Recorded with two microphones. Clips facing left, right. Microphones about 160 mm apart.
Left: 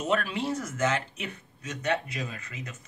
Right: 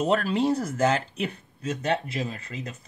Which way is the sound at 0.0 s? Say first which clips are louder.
Right 5 dB; 35° right (ahead or behind).